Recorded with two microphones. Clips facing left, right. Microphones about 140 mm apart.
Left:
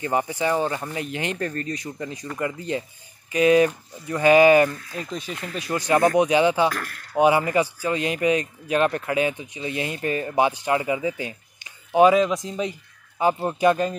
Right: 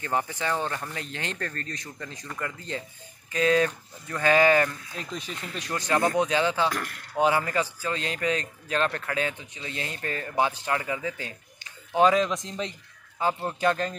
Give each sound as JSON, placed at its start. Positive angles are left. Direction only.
{"t": 0.0, "sound": "speech", "side_deg": 15}
{"t": 6.7, "sound": "speech", "side_deg": -20}
{"t": 7.2, "sound": "speech", "side_deg": 15}